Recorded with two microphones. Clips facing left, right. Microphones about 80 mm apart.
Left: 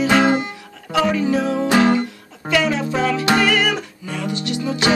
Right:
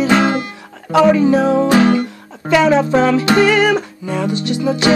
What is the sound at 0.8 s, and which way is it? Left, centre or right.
Music, right.